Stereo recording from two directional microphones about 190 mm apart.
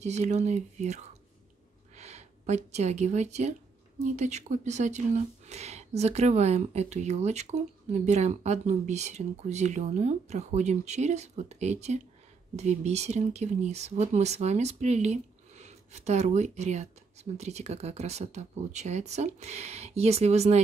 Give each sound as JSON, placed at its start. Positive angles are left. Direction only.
{"t": 0.0, "sound": "speech", "side_deg": -35}